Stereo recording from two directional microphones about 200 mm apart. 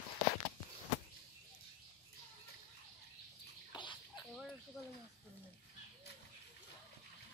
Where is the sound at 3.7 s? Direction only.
25° left (ahead or behind).